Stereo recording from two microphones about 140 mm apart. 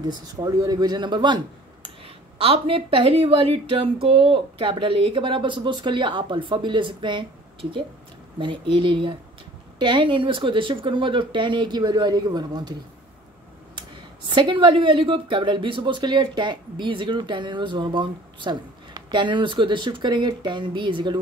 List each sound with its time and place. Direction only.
0.0 s a woman's voice: 30° right (ahead or behind)
2.3 s a woman's voice: 45° right (ahead or behind)
8.4 s a woman's voice: 35° right (ahead or behind)
14.3 s a woman's voice: 35° right (ahead or behind)